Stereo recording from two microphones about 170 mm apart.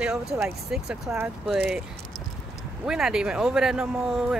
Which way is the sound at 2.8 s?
5° right (ahead or behind).